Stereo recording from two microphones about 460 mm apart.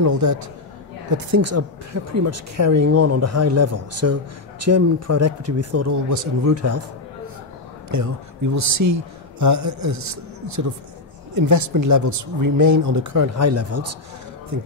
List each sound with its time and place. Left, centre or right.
0.0 s speech: right
7.9 s speech: right